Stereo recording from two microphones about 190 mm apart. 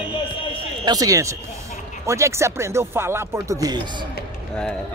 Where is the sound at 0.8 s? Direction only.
20° right (ahead or behind).